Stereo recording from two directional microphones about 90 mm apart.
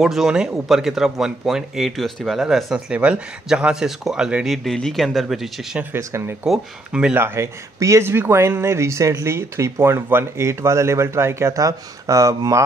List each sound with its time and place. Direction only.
0.0 s speech: 5° right (ahead or behind)
4.6 s speech: 5° left (ahead or behind)
5.9 s speech: 30° right (ahead or behind)
6.4 s speech: 10° right (ahead or behind)
7.2 s speech: 30° right (ahead or behind)